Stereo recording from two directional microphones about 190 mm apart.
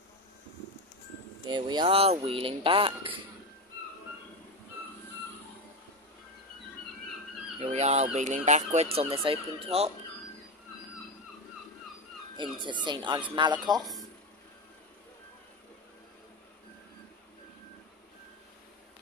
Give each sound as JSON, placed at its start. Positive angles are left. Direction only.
{"t": 1.4, "sound": "speech", "side_deg": -25}
{"t": 7.7, "sound": "speech", "side_deg": -35}
{"t": 12.4, "sound": "speech", "side_deg": -25}